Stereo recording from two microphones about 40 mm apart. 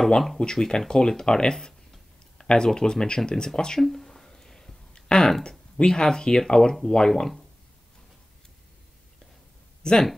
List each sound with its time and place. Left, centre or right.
0.4 s speech: centre
3.8 s a sound: centre
5.8 s speech: left
7.1 s speech: centre
9.8 s speech: centre